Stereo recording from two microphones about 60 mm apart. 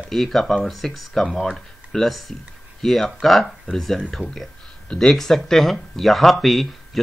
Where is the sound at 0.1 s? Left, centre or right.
Centre.